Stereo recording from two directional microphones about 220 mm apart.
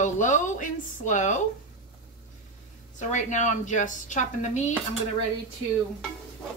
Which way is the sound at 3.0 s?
35° left (ahead or behind).